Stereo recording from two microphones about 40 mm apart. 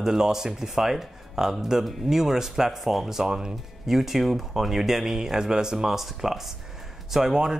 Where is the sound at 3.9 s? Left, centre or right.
Centre.